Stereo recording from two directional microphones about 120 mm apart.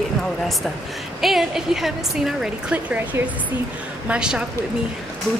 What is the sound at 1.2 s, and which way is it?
A woman's voice, centre (ahead or behind).